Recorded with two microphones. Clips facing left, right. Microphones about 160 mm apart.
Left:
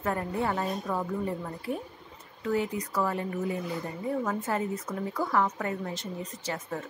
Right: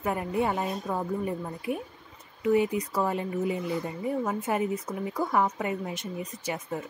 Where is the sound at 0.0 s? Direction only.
15° right (ahead or behind).